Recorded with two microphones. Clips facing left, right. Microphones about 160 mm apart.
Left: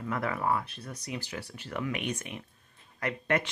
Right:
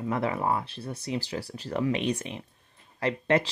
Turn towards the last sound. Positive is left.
turn(degrees=-30)  # may be behind; listen again after turning